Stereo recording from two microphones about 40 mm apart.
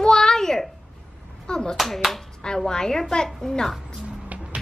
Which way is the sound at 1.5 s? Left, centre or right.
Centre.